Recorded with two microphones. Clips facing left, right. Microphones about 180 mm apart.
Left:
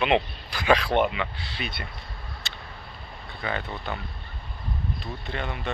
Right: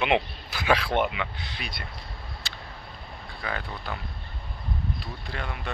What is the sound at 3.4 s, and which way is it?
Speech, centre (ahead or behind).